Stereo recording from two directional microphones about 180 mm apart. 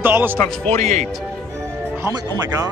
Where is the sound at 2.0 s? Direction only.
20° right (ahead or behind).